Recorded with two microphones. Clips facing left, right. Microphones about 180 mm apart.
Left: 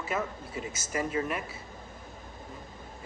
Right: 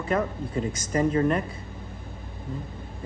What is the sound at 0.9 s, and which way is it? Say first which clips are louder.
Speech: right 8 dB; 35° right (ahead or behind).